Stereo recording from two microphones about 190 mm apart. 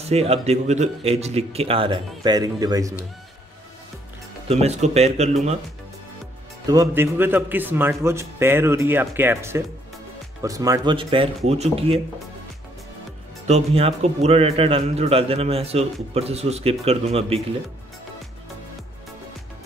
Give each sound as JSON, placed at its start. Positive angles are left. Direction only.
{"t": 0.0, "sound": "a man's voice", "side_deg": -35}
{"t": 4.5, "sound": "a man's voice", "side_deg": -35}
{"t": 6.7, "sound": "a man's voice", "side_deg": -15}
{"t": 13.5, "sound": "a man's voice", "side_deg": -30}